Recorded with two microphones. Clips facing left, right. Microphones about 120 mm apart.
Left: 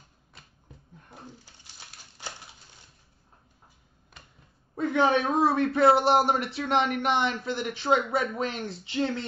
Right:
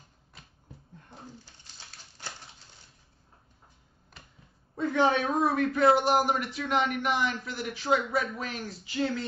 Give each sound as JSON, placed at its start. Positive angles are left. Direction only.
{"t": 4.9, "sound": "a man's voice", "side_deg": 20}